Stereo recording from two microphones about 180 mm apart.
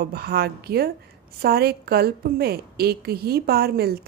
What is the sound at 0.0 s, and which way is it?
A woman's voice, 60° right (ahead or behind).